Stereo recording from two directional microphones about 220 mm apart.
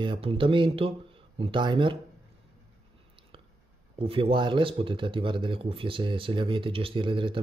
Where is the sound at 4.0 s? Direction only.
25° right (ahead or behind).